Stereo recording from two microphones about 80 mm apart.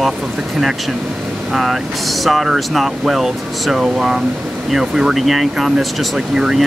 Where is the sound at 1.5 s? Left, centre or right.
Centre.